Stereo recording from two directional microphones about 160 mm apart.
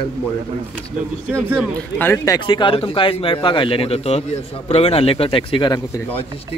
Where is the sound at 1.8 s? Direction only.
10° left (ahead or behind); by 6.0 s 25° left (ahead or behind).